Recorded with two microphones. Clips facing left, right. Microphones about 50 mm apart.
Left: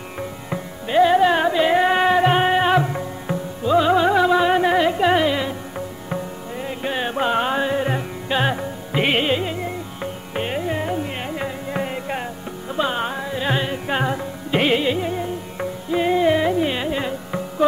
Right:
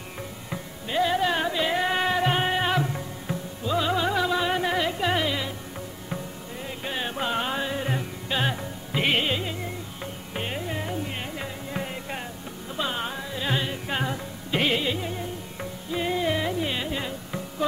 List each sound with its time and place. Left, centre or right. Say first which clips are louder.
0.5 s music: left 7 dB; left
6.6 s music: left 7 dB; centre